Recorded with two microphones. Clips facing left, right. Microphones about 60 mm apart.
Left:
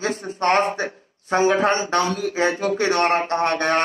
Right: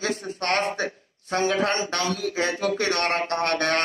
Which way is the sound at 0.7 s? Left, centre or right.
Left.